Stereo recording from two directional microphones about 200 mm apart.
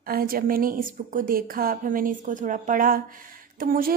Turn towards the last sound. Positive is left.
turn(degrees=-45)  # may be behind; listen again after turning